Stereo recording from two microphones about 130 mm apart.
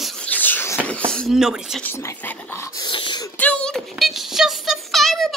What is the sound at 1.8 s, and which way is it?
Speech, 20° left (ahead or behind).